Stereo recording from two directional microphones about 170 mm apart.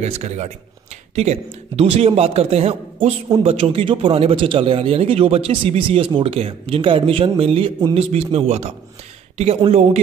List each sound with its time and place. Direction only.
0.0 s a man's voice: 40° right (ahead or behind)